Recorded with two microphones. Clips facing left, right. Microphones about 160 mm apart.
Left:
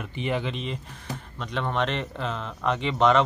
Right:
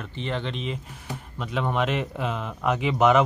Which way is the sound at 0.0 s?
10° left (ahead or behind).